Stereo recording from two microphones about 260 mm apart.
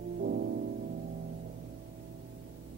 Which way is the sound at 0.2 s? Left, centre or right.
Right.